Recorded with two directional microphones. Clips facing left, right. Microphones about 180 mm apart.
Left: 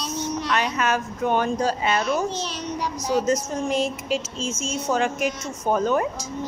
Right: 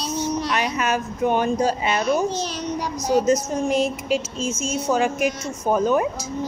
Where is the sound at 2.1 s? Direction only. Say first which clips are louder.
Right 3 dB; 40° right (ahead or behind).